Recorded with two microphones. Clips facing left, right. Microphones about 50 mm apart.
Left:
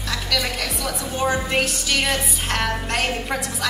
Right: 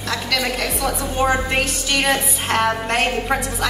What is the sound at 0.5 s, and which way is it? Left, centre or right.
A woman's voice, centre.